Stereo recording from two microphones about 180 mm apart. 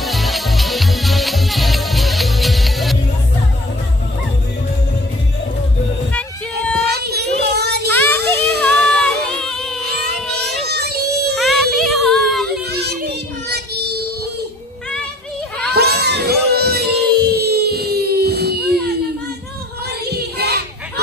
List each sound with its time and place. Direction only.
0.0 s music: centre (ahead or behind)
6.9 s child singing: 65° right (ahead or behind)
7.9 s child singing: 10° left (ahead or behind)
8.3 s a sound: 10° left (ahead or behind)
10.4 s a sound: 65° right (ahead or behind)
11.3 s a sound: centre (ahead or behind)
13.5 s child singing: 65° right (ahead or behind)
15.7 s music: 65° right (ahead or behind)
20.1 s children playing: 65° right (ahead or behind)